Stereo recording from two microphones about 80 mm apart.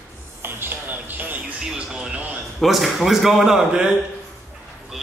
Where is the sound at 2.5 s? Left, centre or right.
Centre.